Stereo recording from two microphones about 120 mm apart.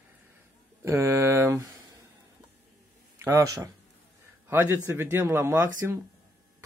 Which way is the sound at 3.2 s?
30° right (ahead or behind).